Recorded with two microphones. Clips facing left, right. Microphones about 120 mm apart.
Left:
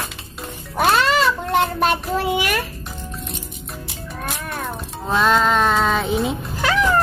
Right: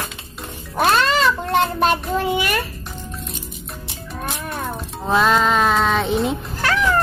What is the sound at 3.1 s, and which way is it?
Music, centre (ahead or behind).